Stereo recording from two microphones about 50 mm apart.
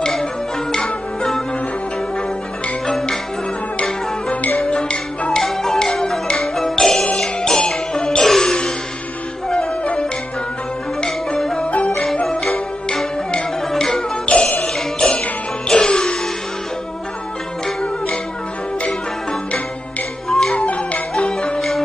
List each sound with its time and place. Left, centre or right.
0.2 s music: centre
4.6 s music: centre
5.4 s music: centre
11.1 s music: centre
11.6 s music: left
12.3 s music: centre
14.2 s music: left
20.2 s music: centre
20.5 s music: left
21.5 s music: centre